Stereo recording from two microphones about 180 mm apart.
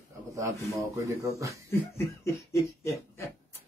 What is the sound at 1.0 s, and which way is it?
Speech, 15° right (ahead or behind).